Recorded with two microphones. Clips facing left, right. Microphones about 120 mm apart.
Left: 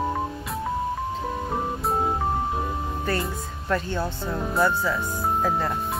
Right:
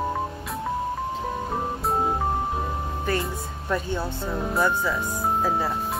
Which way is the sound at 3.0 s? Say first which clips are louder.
Right 2 dB; 10° right (ahead or behind).